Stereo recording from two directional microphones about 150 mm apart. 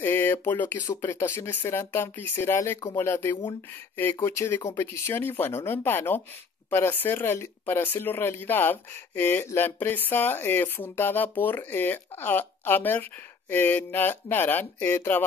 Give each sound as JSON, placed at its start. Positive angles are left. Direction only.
{"t": 0.0, "sound": "speech", "side_deg": 15}